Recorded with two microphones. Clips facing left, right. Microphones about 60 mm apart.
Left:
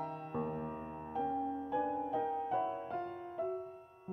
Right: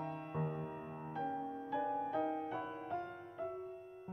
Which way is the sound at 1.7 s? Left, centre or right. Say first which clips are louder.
Left 1 dB; right.